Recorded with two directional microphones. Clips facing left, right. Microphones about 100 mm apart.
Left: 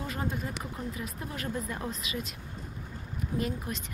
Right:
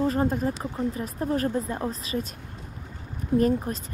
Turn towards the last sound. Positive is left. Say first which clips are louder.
# right 10 dB
turn(degrees=-40)  # may be behind; listen again after turning